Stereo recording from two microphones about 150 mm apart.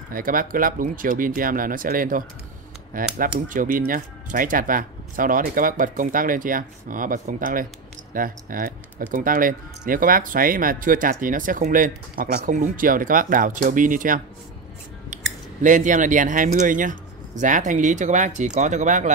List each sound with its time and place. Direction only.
0.1 s speech: 70° right (ahead or behind)
15.6 s speech: 60° right (ahead or behind)